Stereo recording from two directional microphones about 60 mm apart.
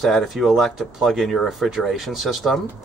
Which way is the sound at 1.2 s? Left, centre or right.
Centre.